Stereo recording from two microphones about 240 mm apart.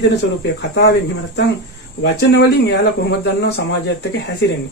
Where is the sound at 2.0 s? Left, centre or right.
Left.